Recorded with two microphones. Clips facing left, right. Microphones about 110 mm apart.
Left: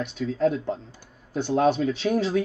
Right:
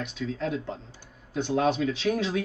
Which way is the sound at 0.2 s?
40° left (ahead or behind).